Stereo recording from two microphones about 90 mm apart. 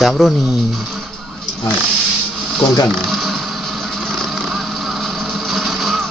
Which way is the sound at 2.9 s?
Centre (ahead or behind).